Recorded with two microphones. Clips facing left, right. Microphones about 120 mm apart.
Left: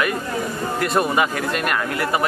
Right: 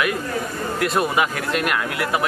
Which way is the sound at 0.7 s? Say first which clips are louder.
Left 1 dB; centre (ahead or behind).